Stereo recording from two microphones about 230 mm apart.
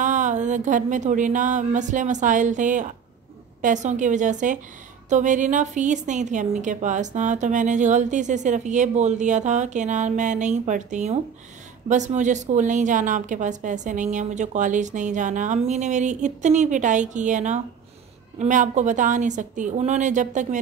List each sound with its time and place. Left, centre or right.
0.0 s a woman's voice: right